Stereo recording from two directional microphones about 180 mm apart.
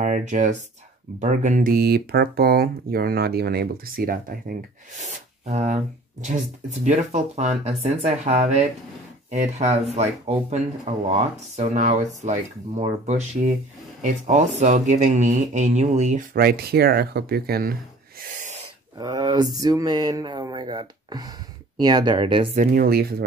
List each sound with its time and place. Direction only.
0.0 s speech: 45° right (ahead or behind)
16.3 s speech: 60° right (ahead or behind)
18.2 s owl: 40° right (ahead or behind)
18.9 s speech: 20° right (ahead or behind)
22.6 s speech: 55° right (ahead or behind)